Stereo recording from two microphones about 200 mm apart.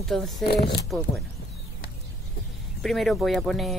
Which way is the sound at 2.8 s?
Centre (ahead or behind).